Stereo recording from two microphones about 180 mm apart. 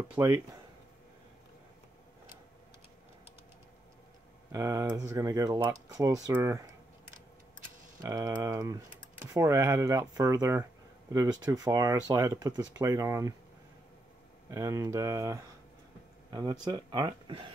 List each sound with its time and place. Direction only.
0.2 s speech: 15° right (ahead or behind)
4.5 s speech: 20° right (ahead or behind)
8.0 s speech: 20° right (ahead or behind)
14.5 s speech: 20° right (ahead or behind)